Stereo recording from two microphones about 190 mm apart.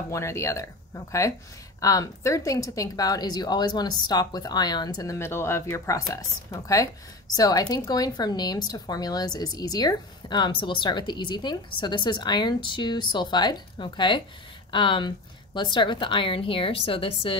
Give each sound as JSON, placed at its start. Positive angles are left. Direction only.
{"t": 0.1, "sound": "a woman's voice", "side_deg": 15}